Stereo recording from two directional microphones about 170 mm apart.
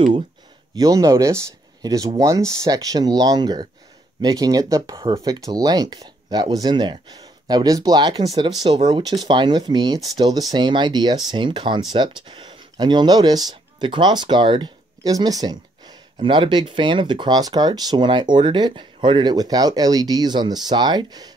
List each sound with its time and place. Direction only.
0.7 s speech: 20° right (ahead or behind)
4.9 s speech: 30° right (ahead or behind)